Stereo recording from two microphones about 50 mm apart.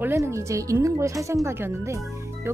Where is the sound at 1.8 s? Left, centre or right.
Right.